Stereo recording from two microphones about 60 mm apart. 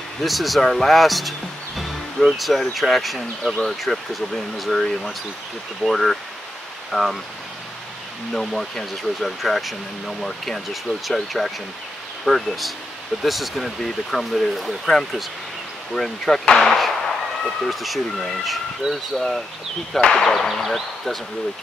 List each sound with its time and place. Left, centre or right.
0.2 s speech: centre
8.3 s speech: centre